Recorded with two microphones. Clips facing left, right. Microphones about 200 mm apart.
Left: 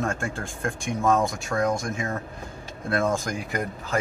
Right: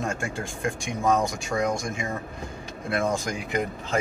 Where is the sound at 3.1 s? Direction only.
20° right (ahead or behind).